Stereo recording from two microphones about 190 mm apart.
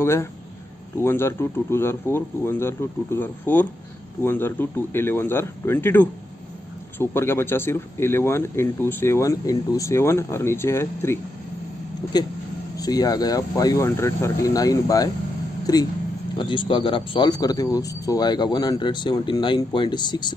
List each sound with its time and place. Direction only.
0.0 s speech: 15° left (ahead or behind)